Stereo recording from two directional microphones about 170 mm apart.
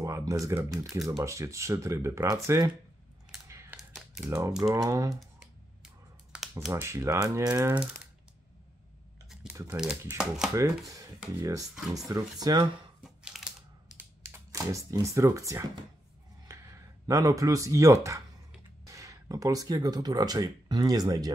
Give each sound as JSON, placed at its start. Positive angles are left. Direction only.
{"t": 0.0, "sound": "speech", "side_deg": -20}
{"t": 0.7, "sound": "speech", "side_deg": 0}
{"t": 1.2, "sound": "speech", "side_deg": -15}
{"t": 3.4, "sound": "a sound", "side_deg": -15}
{"t": 4.2, "sound": "speech", "side_deg": -10}
{"t": 5.1, "sound": "computer keyboard", "side_deg": 0}
{"t": 6.7, "sound": "speech", "side_deg": -15}
{"t": 9.5, "sound": "speech", "side_deg": -10}
{"t": 10.9, "sound": "speech", "side_deg": -20}
{"t": 13.0, "sound": "crushing", "side_deg": -5}
{"t": 14.2, "sound": "speech", "side_deg": -20}